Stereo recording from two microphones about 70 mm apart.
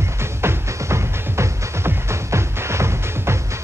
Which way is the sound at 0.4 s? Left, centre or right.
Right.